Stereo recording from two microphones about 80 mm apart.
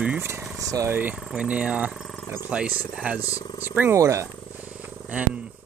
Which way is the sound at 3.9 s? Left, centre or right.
Right.